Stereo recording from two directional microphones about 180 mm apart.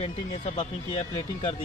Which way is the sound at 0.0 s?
30° left (ahead or behind).